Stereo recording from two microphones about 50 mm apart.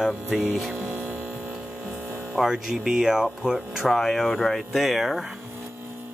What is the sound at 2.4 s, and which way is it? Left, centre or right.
Speech, centre.